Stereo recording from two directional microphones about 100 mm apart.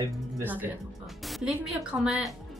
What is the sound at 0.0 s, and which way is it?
Speech, 20° right (ahead or behind).